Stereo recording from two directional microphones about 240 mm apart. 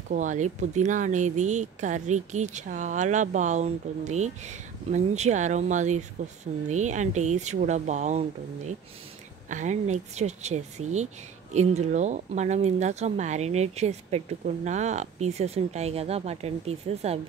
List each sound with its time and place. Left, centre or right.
0.1 s speech: right